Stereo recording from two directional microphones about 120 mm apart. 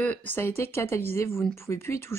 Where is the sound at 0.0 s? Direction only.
15° left (ahead or behind).